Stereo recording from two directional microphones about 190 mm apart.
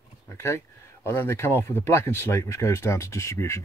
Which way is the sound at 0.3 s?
15° left (ahead or behind).